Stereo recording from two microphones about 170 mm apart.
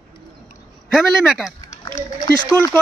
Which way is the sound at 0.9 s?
5° right (ahead or behind).